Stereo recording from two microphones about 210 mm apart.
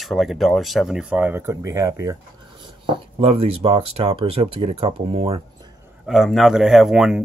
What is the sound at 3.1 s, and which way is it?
Speech, 25° right (ahead or behind).